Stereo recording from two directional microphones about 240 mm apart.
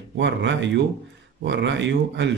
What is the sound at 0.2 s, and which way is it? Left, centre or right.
A man's voice, right.